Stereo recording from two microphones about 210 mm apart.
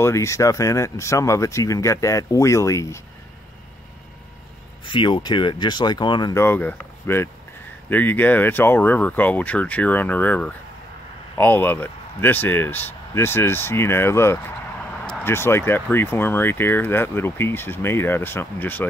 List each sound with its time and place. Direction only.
0.0 s speech: 15° left (ahead or behind)
4.8 s speech: 25° left (ahead or behind)